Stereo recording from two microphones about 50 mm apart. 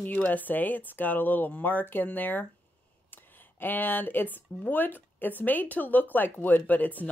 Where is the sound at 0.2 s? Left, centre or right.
Left.